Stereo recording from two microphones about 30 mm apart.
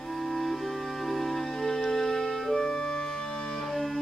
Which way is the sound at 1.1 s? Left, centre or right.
Centre.